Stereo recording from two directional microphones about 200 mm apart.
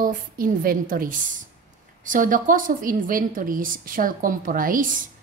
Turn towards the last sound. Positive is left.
turn(degrees=-45)  # may be behind; listen again after turning